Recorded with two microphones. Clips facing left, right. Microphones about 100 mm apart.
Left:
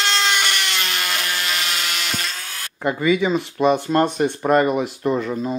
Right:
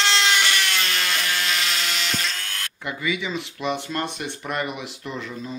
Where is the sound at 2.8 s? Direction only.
45° left (ahead or behind).